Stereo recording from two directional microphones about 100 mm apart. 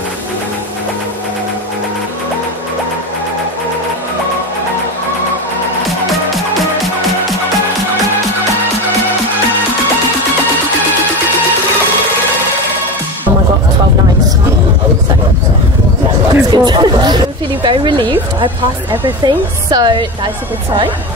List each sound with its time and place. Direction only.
16.3 s speech: 40° right (ahead or behind)